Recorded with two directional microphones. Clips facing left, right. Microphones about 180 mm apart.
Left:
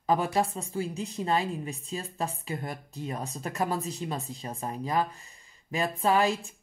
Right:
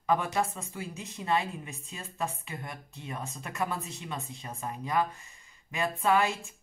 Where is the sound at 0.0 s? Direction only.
35° left (ahead or behind).